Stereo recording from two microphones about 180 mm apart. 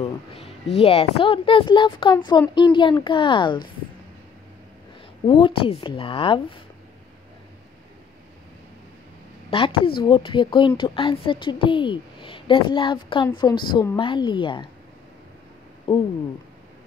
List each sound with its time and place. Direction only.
0.0 s a woman's voice: 35° left (ahead or behind)
5.2 s a woman's voice: 30° left (ahead or behind)
9.5 s a woman's voice: 30° left (ahead or behind)
15.9 s a woman's voice: 30° left (ahead or behind)